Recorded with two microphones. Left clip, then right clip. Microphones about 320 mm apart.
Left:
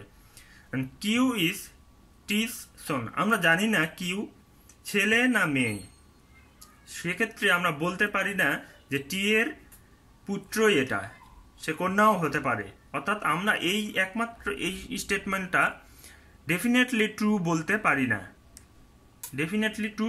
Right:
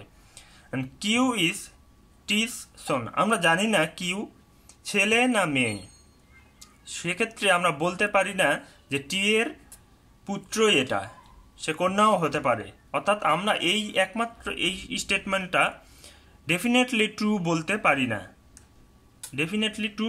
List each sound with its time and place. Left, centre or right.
0.3 s speech: centre
6.9 s speech: centre
19.3 s speech: centre